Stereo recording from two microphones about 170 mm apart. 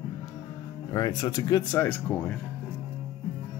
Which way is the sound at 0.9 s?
20° left (ahead or behind).